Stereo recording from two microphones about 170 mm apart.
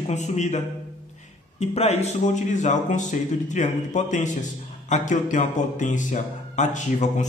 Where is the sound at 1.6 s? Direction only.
40° left (ahead or behind).